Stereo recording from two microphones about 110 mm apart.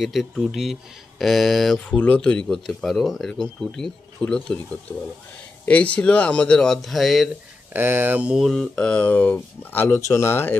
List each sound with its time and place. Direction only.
0.0 s speech: centre (ahead or behind)
1.9 s speech: 10° left (ahead or behind)
5.7 s speech: 10° left (ahead or behind)
7.7 s speech: 20° right (ahead or behind)
8.5 s speech: 5° left (ahead or behind); by 10.5 s 20° left (ahead or behind)